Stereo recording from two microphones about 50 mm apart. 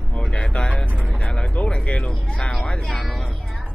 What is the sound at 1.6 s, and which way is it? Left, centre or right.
Music, left.